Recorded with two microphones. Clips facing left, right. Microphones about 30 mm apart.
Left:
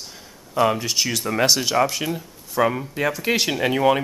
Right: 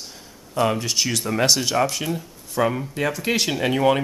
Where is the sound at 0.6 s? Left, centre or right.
Centre.